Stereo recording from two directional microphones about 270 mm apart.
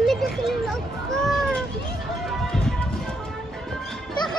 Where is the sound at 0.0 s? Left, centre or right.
Centre.